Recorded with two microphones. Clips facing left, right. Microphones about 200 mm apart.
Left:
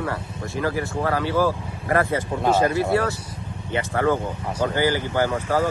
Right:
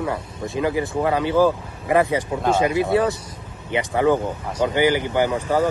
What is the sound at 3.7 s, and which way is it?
Speech, 15° right (ahead or behind).